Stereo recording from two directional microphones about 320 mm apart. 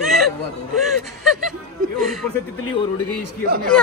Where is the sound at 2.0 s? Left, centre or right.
Centre.